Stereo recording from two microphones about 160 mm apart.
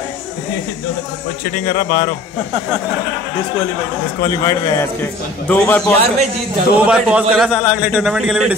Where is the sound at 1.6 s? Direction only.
35° left (ahead or behind).